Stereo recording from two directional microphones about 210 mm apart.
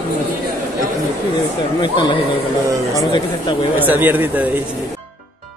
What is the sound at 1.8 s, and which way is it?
Speech, 20° left (ahead or behind).